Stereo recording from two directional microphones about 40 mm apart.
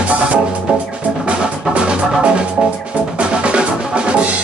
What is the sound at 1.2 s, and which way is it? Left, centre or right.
Music, right.